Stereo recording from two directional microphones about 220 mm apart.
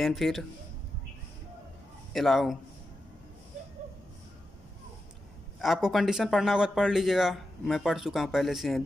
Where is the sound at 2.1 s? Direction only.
Centre (ahead or behind).